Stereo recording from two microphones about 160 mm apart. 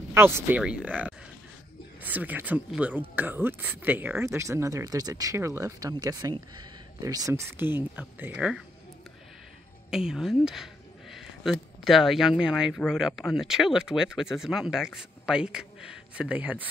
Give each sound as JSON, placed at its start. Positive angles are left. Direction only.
{"t": 0.1, "sound": "speech", "side_deg": -10}
{"t": 9.8, "sound": "speech", "side_deg": -5}